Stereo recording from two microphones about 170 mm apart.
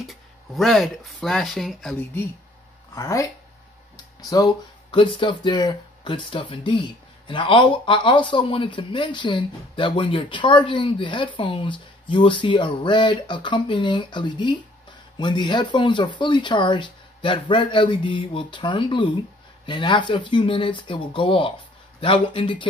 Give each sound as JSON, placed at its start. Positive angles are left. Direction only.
{"t": 0.0, "sound": "speech", "side_deg": 0}
{"t": 2.9, "sound": "speech", "side_deg": 20}